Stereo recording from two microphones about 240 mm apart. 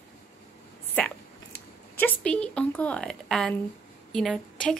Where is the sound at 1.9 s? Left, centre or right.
Centre.